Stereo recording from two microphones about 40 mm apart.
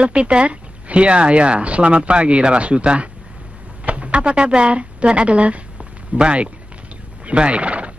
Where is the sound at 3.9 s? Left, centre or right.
Right.